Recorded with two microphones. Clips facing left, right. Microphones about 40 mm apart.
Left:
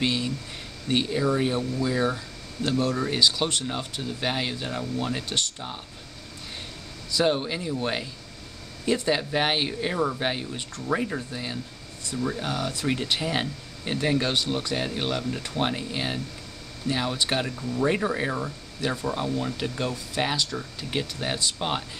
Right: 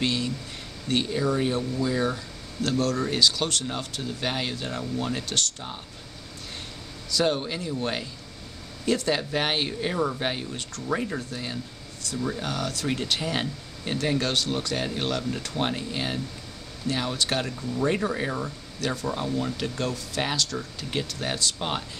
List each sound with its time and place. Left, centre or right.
0.0 s speech: centre
2.8 s speech: centre
7.2 s speech: centre